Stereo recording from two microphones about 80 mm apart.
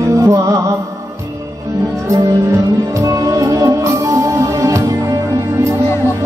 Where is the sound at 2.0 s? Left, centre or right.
Right.